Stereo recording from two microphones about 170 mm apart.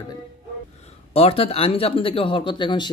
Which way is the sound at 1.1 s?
35° left (ahead or behind).